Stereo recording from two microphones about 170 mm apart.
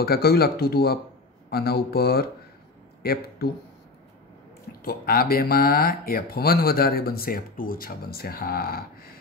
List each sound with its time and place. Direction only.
0.0 s speech: 65° left (ahead or behind)
4.8 s speech: 60° left (ahead or behind)